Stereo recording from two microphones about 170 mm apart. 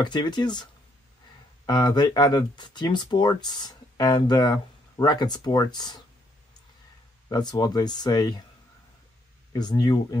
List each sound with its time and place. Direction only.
0.0 s speech: 25° left (ahead or behind)
1.7 s speech: 25° left (ahead or behind)
7.2 s speech: 25° left (ahead or behind)
9.5 s speech: 25° left (ahead or behind)